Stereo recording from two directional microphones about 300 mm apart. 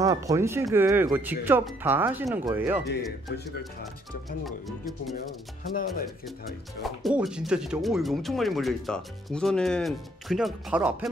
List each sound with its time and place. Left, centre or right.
0.0 s speech: centre
4.5 s speech: centre
5.6 s music: left
6.8 s speech: centre